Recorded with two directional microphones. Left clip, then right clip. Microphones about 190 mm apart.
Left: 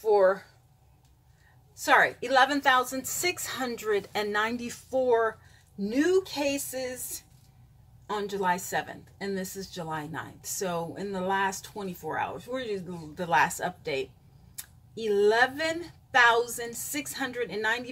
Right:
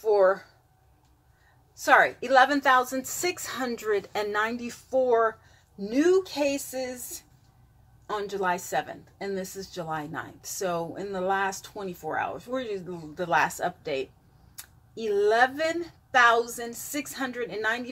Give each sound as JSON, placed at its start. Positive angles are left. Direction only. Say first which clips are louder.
{"t": 0.0, "sound": "a sound", "louder": "right 1 dB", "side_deg": 10}
{"t": 2.0, "sound": "a woman's voice", "louder": "right 2 dB", "side_deg": 10}
{"t": 2.9, "sound": "speech", "louder": "right 3 dB", "side_deg": 25}
{"t": 3.5, "sound": "a woman's voice", "louder": "right 1 dB", "side_deg": 15}
{"t": 8.1, "sound": "a woman's voice", "louder": "even", "side_deg": 10}